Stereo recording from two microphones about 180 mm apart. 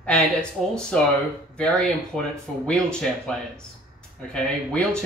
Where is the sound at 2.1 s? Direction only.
5° left (ahead or behind).